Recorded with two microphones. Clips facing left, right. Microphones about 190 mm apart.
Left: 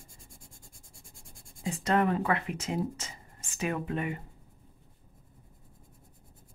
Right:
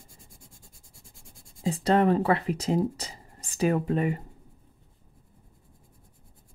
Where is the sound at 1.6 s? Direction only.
30° right (ahead or behind).